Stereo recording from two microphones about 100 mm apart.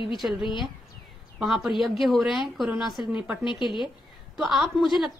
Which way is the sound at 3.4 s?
55° left (ahead or behind).